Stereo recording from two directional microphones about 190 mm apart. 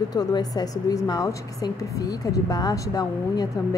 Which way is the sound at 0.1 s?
20° left (ahead or behind).